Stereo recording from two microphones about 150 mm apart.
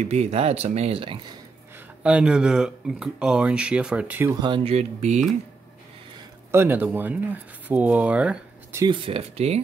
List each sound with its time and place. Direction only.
0.0 s speech: 45° right (ahead or behind)
2.0 s speech: 5° right (ahead or behind)
4.4 s speech: 30° right (ahead or behind)
4.7 s speech: 50° right (ahead or behind)
6.5 s speech: 15° right (ahead or behind)
8.8 s speech: 35° right (ahead or behind)